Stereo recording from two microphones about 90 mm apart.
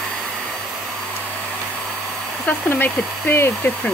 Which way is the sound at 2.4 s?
20° left (ahead or behind).